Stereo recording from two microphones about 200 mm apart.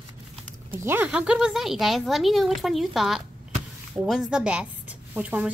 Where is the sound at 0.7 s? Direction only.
10° right (ahead or behind).